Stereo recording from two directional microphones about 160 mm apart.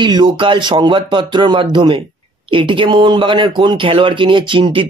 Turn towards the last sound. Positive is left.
turn(degrees=-30)  # may be behind; listen again after turning